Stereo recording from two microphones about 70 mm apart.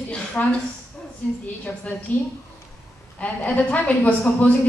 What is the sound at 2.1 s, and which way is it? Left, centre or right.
A woman's voice, left.